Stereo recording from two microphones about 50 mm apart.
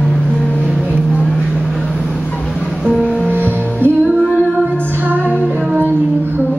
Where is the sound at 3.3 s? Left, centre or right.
Right.